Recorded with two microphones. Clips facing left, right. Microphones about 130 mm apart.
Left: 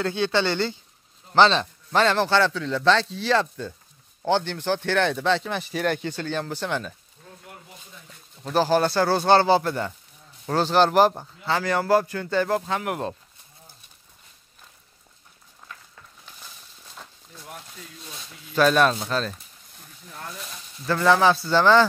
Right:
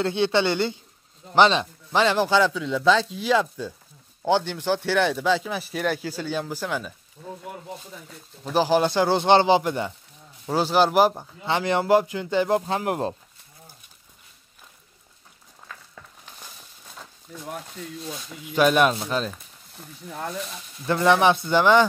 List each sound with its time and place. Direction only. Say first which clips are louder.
0.0 s speech: right 2 dB; 25° right (ahead or behind); by 6.9 s 5° right (ahead or behind)
8.5 s speech: even; 15° right (ahead or behind)
11.4 s speech: right 1 dB; 20° right (ahead or behind)
12.6 s speech: right 2 dB; 30° right (ahead or behind)
18.5 s speech: even; 15° right (ahead or behind)
20.8 s speech: even; 20° right (ahead or behind)